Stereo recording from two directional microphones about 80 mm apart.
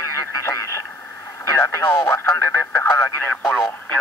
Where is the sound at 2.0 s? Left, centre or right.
Left.